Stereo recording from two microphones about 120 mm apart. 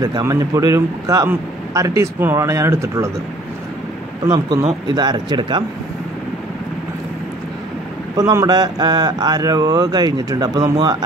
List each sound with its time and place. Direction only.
0.0 s a man's voice: 30° right (ahead or behind)
4.3 s speech: 35° right (ahead or behind)
8.2 s speech: 30° right (ahead or behind)